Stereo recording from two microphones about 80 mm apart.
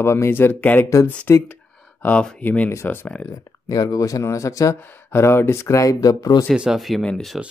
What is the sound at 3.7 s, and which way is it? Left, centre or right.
Speech, left.